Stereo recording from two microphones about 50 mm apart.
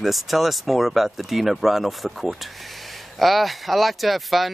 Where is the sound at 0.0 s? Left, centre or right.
Centre.